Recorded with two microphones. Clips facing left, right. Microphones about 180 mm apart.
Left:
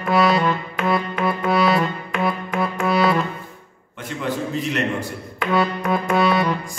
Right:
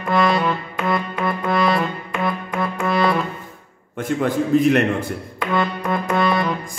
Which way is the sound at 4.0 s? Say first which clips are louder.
Right 5 dB; 50° right (ahead or behind).